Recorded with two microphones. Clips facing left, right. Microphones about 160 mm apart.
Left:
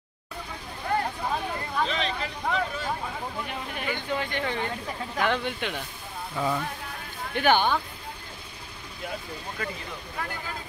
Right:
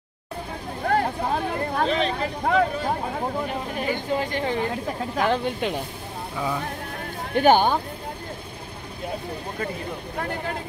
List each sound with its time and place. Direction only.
0.8 s vehicle: 55° right (ahead or behind)
3.6 s a sound: 35° right (ahead or behind)
5.1 s speech: 35° right (ahead or behind)
7.3 s speech: 40° right (ahead or behind)